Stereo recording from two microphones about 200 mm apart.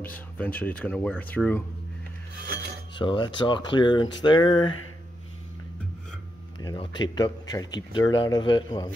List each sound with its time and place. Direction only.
0.0 s speech: 10° left (ahead or behind)
2.4 s cutlery: 50° right (ahead or behind)
2.9 s a man's voice: 25° left (ahead or behind)
6.6 s a man's voice: 20° left (ahead or behind)